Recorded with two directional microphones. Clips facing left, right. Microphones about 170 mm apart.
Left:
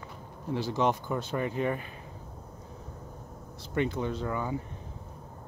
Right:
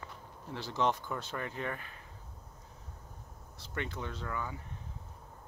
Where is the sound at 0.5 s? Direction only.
10° left (ahead or behind).